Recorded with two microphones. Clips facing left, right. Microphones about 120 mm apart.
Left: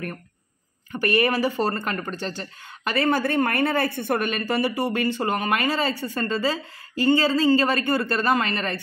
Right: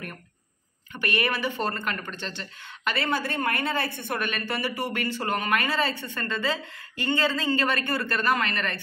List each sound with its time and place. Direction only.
0.9 s a woman's voice: 40° left (ahead or behind)
4.2 s speech: 35° left (ahead or behind)